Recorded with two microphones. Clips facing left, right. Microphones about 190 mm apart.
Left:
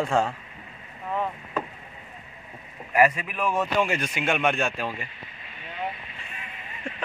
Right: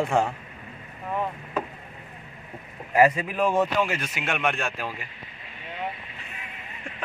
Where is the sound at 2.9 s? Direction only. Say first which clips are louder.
Right 2 dB; 25° right (ahead or behind).